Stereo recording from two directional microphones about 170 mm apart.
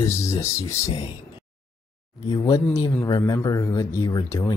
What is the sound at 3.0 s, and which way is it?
Speech, 20° left (ahead or behind).